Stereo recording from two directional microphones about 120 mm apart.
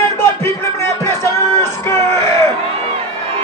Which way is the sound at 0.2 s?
20° left (ahead or behind).